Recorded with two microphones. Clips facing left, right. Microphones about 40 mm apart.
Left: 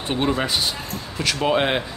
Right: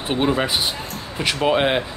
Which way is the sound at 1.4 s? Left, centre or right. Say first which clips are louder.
Right 2 dB; centre.